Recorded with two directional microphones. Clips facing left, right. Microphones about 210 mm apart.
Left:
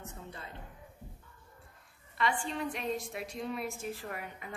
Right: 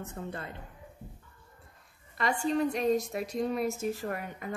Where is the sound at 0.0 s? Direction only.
55° right (ahead or behind).